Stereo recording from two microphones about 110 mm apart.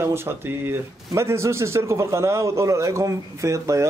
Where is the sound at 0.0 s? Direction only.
20° right (ahead or behind).